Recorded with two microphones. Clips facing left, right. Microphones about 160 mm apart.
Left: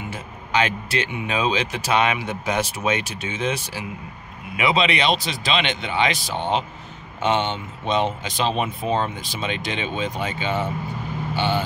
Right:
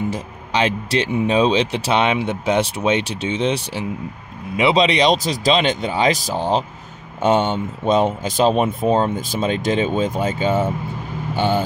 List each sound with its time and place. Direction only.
0.1 s speech: 30° right (ahead or behind)